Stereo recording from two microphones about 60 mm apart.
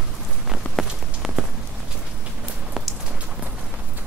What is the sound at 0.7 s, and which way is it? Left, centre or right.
Rain on surface, centre.